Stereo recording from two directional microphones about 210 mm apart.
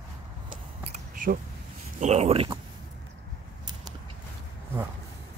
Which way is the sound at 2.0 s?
30° right (ahead or behind).